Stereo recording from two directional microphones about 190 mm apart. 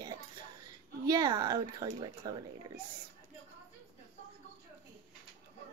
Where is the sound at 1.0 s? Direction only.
20° right (ahead or behind).